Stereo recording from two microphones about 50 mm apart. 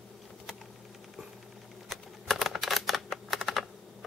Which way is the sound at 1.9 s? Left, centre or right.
Centre.